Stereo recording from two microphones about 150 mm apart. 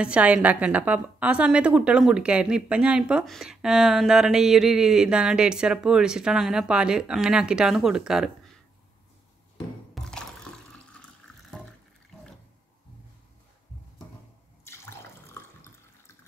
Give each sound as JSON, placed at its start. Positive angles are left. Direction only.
{"t": 0.0, "sound": "a woman's voice", "side_deg": -10}
{"t": 9.9, "sound": "water", "side_deg": 5}
{"t": 14.6, "sound": "water", "side_deg": 15}